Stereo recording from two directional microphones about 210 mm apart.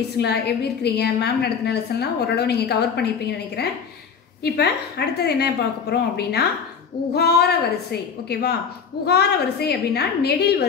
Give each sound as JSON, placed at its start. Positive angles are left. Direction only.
{"t": 0.2, "sound": "a woman's voice", "side_deg": 50}
{"t": 4.4, "sound": "a woman's voice", "side_deg": 50}